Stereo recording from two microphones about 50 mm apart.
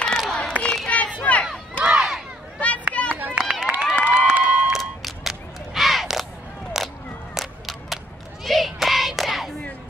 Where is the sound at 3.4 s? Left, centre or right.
Centre.